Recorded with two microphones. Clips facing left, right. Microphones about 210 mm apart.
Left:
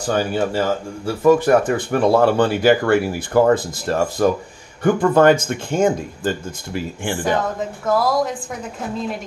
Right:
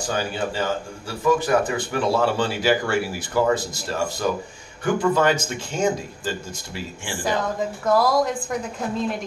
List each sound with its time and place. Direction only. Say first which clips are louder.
0.0 s speech: left 6 dB; 50° left (ahead or behind)
7.9 s a woman's voice: even; centre (ahead or behind)